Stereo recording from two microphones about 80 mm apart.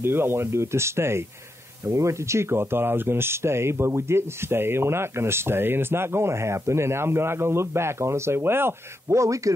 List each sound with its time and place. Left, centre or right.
0.0 s speech: right